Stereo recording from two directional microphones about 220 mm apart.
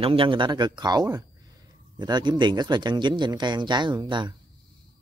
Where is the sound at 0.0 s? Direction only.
25° right (ahead or behind).